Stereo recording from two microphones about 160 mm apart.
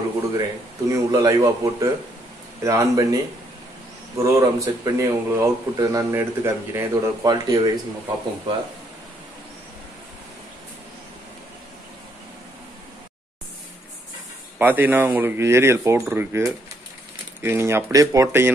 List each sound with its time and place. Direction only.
0.3 s speech: 20° right (ahead or behind)
4.2 s speech: 20° right (ahead or behind)
14.6 s speech: 10° right (ahead or behind)